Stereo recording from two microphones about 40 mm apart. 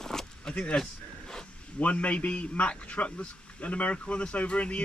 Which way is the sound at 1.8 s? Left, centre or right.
Left.